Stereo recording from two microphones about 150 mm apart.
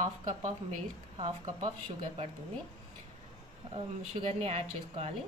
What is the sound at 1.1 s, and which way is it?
Speech, 40° right (ahead or behind).